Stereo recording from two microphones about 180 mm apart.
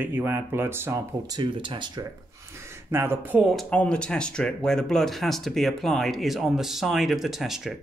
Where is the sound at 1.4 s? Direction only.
25° right (ahead or behind).